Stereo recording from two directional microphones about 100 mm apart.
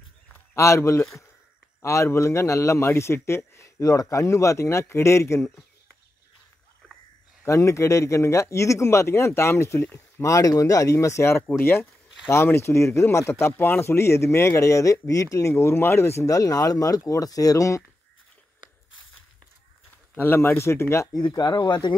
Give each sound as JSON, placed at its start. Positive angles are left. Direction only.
{"t": 0.6, "sound": "speech", "side_deg": 30}
{"t": 7.4, "sound": "speech", "side_deg": 30}
{"t": 10.3, "sound": "speech", "side_deg": 35}
{"t": 20.2, "sound": "speech", "side_deg": 20}
{"t": 21.2, "sound": "speech", "side_deg": 40}